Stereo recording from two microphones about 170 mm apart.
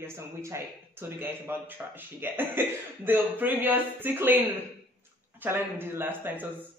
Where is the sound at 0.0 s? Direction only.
15° right (ahead or behind).